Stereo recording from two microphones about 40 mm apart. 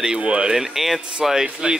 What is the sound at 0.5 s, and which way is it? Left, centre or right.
Speech, centre.